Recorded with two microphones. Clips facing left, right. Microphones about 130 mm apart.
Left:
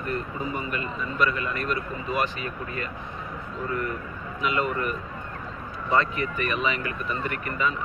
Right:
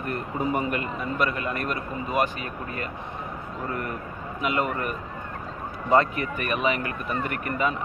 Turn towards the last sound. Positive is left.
turn(degrees=-55)  # may be behind; listen again after turning